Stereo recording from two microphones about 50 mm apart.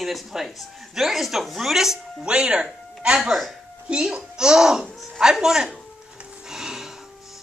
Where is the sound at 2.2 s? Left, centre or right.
Centre.